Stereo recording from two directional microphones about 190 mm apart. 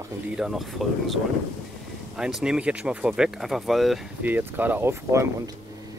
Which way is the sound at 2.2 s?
5° right (ahead or behind).